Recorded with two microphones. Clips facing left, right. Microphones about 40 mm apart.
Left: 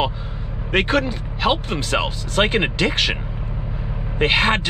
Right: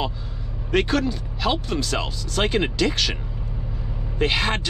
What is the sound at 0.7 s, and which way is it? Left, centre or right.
Speech, left.